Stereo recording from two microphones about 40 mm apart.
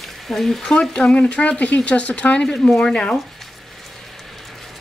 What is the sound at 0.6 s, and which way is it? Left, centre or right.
Speech, centre.